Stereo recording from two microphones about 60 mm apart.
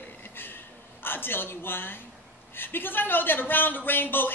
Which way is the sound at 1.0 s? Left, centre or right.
Left.